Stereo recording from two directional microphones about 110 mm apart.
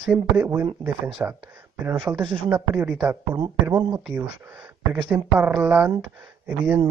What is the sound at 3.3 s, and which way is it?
Speech, 40° right (ahead or behind).